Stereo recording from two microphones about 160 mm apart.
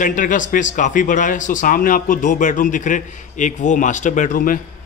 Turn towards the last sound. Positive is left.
turn(degrees=60)  # may be behind; listen again after turning